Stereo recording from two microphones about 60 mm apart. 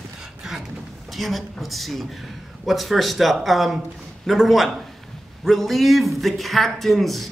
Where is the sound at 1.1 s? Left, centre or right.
Centre.